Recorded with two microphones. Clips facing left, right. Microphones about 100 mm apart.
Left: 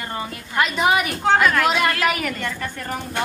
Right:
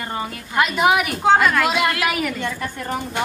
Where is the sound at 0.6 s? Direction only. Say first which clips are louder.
Right 2 dB; 5° right (ahead or behind).